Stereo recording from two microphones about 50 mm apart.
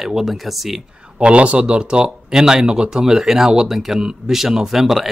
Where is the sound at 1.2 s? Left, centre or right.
Right.